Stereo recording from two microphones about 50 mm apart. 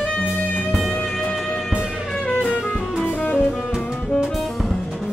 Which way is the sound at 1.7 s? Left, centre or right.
Centre.